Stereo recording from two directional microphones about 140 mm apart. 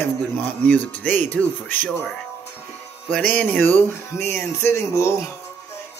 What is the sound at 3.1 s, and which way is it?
Speech, 10° left (ahead or behind).